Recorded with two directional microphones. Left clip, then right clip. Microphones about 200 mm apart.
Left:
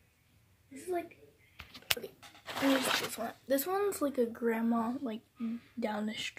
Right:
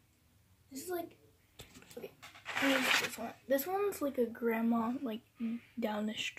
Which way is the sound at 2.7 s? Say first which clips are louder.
Even; 5° left (ahead or behind).